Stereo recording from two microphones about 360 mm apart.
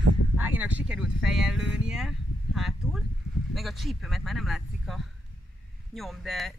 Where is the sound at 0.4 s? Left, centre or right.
Centre.